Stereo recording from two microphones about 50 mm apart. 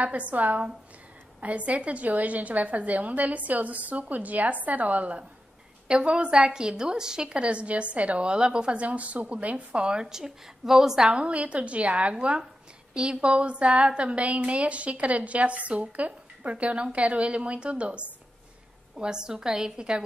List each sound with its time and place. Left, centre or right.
0.0 s a woman's voice: right
5.9 s a woman's voice: centre